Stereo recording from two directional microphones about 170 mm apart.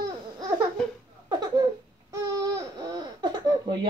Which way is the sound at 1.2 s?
20° right (ahead or behind).